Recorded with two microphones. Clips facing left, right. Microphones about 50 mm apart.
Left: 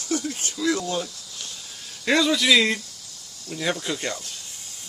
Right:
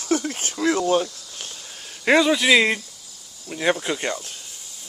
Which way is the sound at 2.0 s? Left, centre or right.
Right.